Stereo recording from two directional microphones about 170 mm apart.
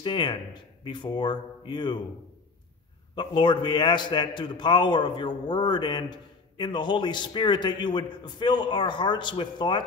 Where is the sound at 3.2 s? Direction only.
30° left (ahead or behind).